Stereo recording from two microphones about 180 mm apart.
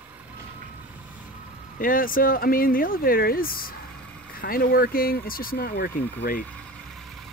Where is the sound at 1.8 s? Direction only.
50° left (ahead or behind).